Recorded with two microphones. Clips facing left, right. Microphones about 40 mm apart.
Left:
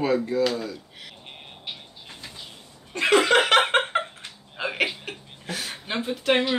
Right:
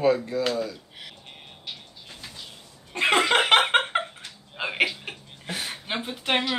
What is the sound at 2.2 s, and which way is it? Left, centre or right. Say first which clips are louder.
Bird flight: even; centre.